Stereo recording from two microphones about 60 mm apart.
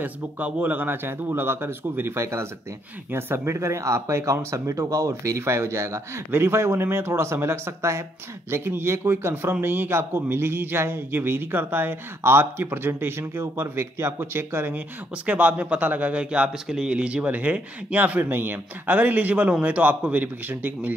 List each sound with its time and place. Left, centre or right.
0.0 s speech: right
3.5 s speech: right
15.2 s speech: right
18.2 s speech: right